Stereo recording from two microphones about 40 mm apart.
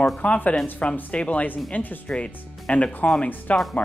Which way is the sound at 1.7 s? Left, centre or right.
Left.